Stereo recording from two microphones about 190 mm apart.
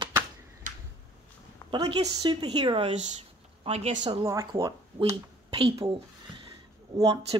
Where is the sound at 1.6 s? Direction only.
20° right (ahead or behind).